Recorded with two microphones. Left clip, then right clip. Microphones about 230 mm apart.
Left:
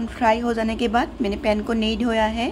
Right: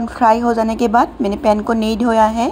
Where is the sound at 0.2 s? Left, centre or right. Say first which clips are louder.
Right 7 dB; centre.